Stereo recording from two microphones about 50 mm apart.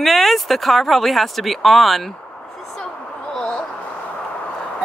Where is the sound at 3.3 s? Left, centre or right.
Centre.